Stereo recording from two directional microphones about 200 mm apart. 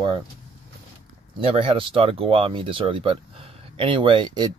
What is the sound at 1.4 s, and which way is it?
Speech, 25° right (ahead or behind).